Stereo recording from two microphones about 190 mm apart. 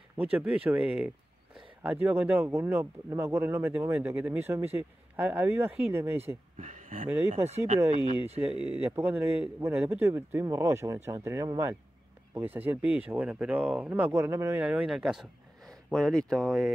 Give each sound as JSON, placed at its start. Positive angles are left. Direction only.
{"t": 0.2, "sound": "speech", "side_deg": -5}
{"t": 6.6, "sound": "speech", "side_deg": -45}
{"t": 7.2, "sound": "speech", "side_deg": -35}
{"t": 7.8, "sound": "speech", "side_deg": -10}